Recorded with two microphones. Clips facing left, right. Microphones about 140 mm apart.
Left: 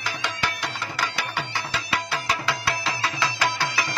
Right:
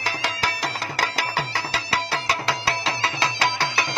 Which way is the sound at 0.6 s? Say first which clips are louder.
Right 3 dB; 90° right.